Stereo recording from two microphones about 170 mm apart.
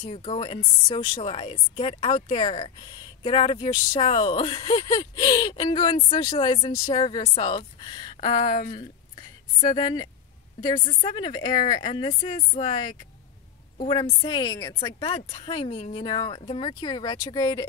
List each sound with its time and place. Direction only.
0.1 s speech: 40° left (ahead or behind)
0.5 s a woman's voice: 30° left (ahead or behind)
8.4 s speech: 50° left (ahead or behind)
9.6 s a woman's voice: 25° left (ahead or behind)